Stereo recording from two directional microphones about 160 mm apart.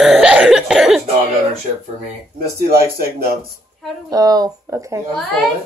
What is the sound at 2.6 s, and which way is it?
Speech, 70° right (ahead or behind).